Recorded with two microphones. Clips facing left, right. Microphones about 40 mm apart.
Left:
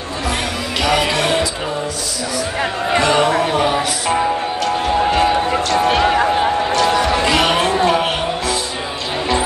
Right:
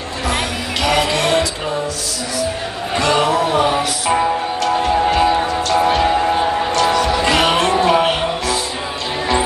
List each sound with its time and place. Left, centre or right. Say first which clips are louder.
0.8 s music: even; centre
3.0 s music: even; centre
5.9 s music: left 3 dB; left
6.3 s music: left 1 dB; centre